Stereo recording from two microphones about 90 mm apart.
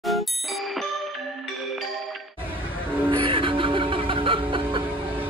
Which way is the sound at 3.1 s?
75° right (ahead or behind).